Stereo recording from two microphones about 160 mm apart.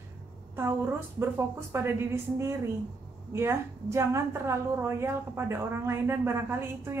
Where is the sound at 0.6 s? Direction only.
15° right (ahead or behind).